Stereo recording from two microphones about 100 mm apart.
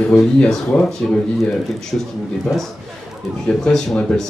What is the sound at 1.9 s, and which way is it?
Speech, 5° right (ahead or behind).